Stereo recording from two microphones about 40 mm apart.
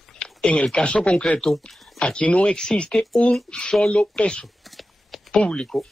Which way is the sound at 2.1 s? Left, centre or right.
Left.